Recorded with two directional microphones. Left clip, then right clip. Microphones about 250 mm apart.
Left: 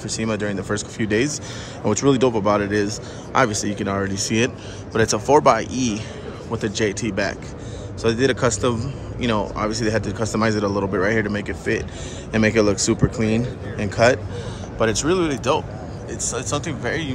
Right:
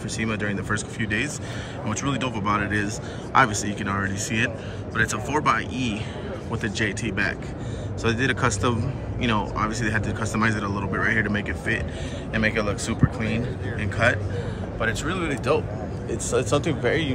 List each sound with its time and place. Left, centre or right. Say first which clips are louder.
0.1 s a man's voice: left 3 dB; centre
12.3 s a man's voice: left 6 dB; left
16.1 s speech: right 2 dB; centre